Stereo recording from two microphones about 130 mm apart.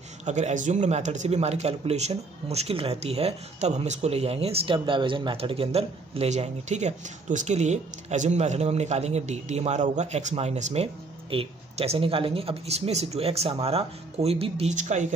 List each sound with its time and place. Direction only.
0.2 s speech: 65° right (ahead or behind)